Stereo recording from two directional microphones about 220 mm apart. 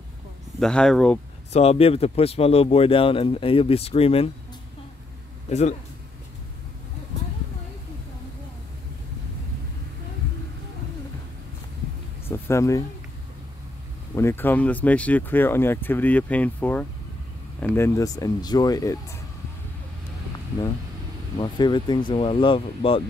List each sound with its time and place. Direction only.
0.6 s speech: 5° left (ahead or behind)
1.5 s speech: 25° left (ahead or behind)
5.5 s a man's voice: 30° left (ahead or behind)
12.3 s speech: 15° left (ahead or behind)
14.1 s speech: 10° left (ahead or behind)
21.4 s speech: 20° left (ahead or behind)